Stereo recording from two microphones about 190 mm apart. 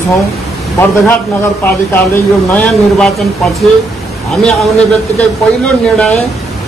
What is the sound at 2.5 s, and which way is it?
A man's voice, 5° left (ahead or behind).